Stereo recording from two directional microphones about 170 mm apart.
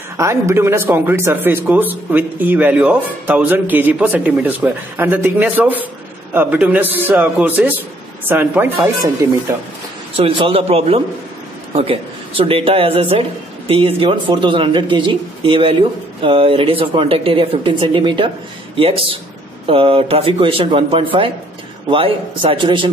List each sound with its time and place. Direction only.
0.2 s a man's voice: 15° right (ahead or behind)
10.1 s a man's voice: 30° right (ahead or behind)